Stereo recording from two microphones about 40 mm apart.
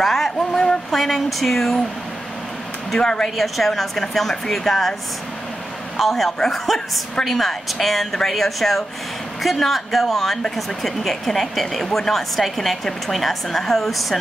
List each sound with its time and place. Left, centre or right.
0.0 s a sound: centre
0.9 s speech: centre
3.0 s speech: centre
3.3 s speech: centre
5.9 s speech: centre